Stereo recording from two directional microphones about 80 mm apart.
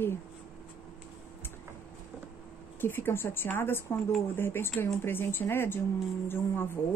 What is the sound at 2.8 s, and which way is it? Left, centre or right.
Speech, left.